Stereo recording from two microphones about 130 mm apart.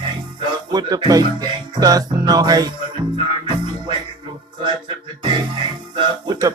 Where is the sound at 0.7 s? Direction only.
35° right (ahead or behind).